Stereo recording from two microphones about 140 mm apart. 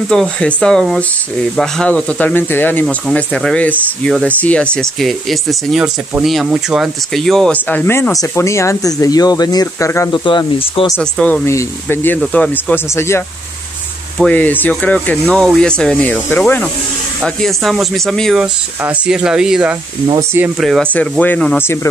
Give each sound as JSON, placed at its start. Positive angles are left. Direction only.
{"t": 0.1, "sound": "speech", "side_deg": 5}
{"t": 10.2, "sound": "speech", "side_deg": 35}
{"t": 11.0, "sound": "speech", "side_deg": 5}
{"t": 11.4, "sound": "speech", "side_deg": 20}
{"t": 14.1, "sound": "speech", "side_deg": 10}
{"t": 17.2, "sound": "speech", "side_deg": 5}
{"t": 18.8, "sound": "speech", "side_deg": -10}
{"t": 20.6, "sound": "speech", "side_deg": 5}